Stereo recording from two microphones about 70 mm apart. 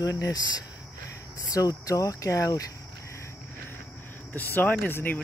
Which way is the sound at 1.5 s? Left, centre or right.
Left.